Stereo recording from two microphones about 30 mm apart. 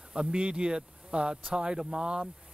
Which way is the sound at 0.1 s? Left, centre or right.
Right.